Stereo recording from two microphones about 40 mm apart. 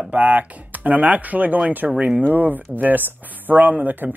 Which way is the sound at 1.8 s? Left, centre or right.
Centre.